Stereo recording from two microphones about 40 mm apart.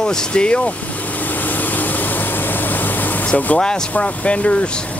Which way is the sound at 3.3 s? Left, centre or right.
Left.